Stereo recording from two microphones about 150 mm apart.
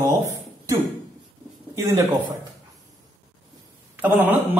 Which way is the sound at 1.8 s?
20° right (ahead or behind).